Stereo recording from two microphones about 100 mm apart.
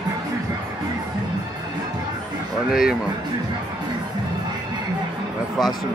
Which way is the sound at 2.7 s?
5° right (ahead or behind).